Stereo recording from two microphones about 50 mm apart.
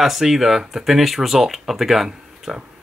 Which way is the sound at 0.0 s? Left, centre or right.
Centre.